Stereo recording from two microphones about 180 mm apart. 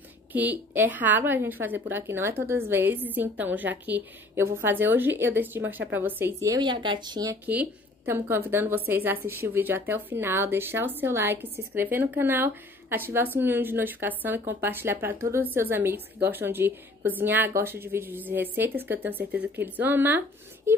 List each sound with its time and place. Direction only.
0.3 s a woman's voice: 10° right (ahead or behind)
7.4 s a woman's voice: 10° right (ahead or behind)